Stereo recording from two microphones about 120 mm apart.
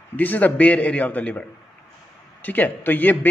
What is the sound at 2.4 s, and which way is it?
Speech, 15° left (ahead or behind).